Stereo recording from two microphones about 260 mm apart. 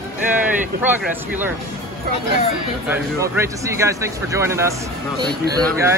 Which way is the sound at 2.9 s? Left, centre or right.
Centre.